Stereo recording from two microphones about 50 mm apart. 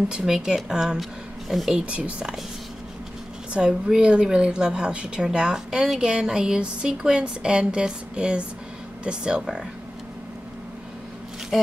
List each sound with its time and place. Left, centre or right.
0.1 s speech: centre
1.9 s speech: right
3.5 s speech: centre